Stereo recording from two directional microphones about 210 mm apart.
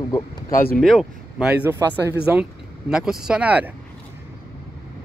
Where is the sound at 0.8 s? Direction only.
Centre (ahead or behind).